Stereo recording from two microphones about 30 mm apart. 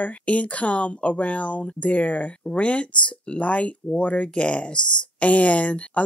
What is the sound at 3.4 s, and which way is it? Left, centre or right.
Speech, left.